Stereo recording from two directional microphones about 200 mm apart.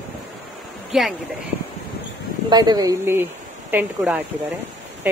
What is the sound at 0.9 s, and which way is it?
Speech, 5° right (ahead or behind).